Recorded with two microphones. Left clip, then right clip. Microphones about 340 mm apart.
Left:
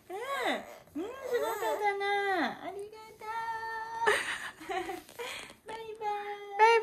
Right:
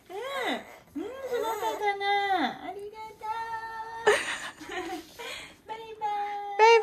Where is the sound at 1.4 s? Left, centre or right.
Centre.